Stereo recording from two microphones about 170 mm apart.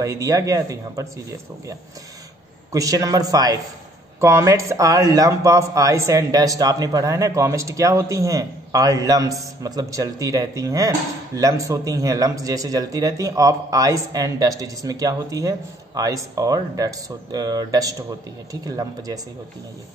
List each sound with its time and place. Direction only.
0.0 s speech: 20° right (ahead or behind)
2.7 s speech: 20° right (ahead or behind)